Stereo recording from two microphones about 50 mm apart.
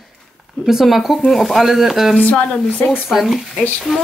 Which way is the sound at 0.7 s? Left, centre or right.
Centre.